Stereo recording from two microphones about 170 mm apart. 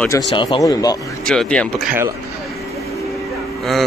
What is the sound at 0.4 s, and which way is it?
Speech, 25° left (ahead or behind).